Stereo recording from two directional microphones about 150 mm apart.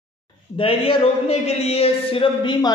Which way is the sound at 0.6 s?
40° left (ahead or behind).